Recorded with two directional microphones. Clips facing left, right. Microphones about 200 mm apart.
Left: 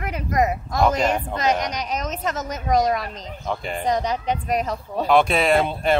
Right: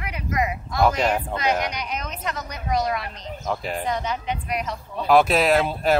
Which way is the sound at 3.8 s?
40° left (ahead or behind).